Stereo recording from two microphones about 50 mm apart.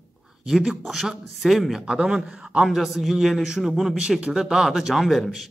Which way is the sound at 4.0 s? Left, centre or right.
Right.